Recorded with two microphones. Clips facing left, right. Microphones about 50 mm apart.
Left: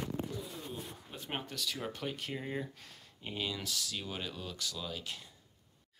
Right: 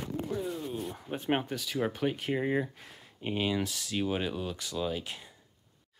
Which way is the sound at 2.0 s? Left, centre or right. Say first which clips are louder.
Right 9 dB; right.